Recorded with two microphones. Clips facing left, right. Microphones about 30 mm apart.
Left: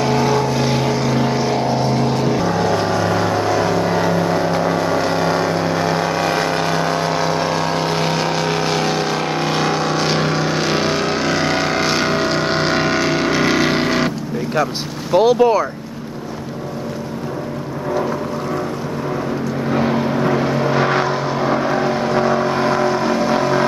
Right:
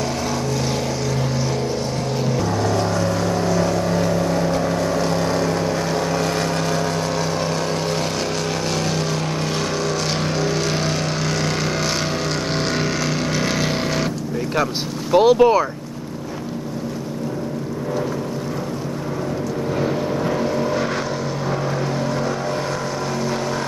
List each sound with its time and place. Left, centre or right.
0.0 s vehicle: left
15.1 s vehicle: centre
19.7 s vehicle: left